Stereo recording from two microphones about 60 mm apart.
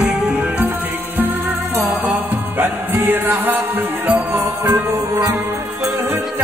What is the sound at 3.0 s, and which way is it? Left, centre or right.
Music, right.